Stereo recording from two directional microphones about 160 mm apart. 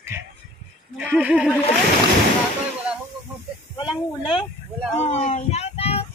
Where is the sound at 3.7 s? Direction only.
25° left (ahead or behind).